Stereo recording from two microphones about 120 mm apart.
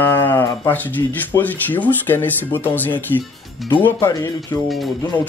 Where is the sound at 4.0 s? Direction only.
30° left (ahead or behind).